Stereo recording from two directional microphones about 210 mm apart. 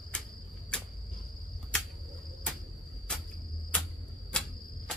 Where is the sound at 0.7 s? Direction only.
5° left (ahead or behind).